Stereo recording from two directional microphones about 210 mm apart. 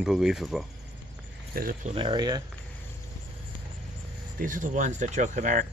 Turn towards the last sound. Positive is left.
turn(degrees=-35)  # may be behind; listen again after turning